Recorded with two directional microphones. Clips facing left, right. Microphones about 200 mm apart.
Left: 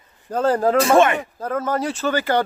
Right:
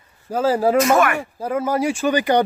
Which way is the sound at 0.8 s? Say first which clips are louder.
Left 1 dB; 30° left (ahead or behind).